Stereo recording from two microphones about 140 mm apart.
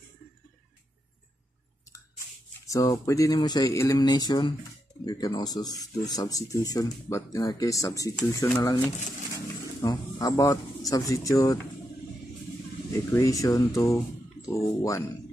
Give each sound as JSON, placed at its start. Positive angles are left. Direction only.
{"t": 2.6, "sound": "speech", "side_deg": 25}
{"t": 9.3, "sound": "pigeon", "side_deg": 25}
{"t": 12.9, "sound": "speech", "side_deg": 25}